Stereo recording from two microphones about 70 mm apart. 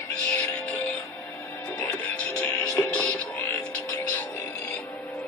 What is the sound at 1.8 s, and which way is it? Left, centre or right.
Music, centre.